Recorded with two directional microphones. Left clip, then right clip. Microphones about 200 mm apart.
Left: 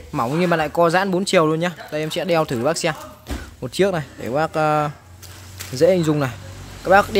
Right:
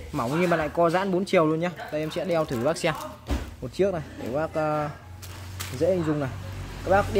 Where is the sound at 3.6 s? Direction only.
35° left (ahead or behind).